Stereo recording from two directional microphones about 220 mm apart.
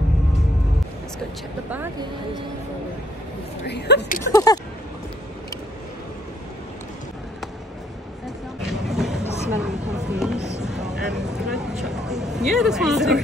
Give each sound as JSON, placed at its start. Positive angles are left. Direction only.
{"t": 1.7, "sound": "speech", "side_deg": -10}
{"t": 3.6, "sound": "speech", "side_deg": 50}
{"t": 4.3, "sound": "speech", "side_deg": 15}
{"t": 8.6, "sound": "a sound", "side_deg": 0}